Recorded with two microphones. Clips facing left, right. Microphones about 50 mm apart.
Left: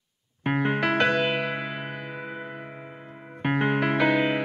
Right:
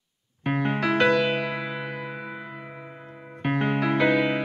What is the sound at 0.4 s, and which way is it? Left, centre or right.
Electric piano, left.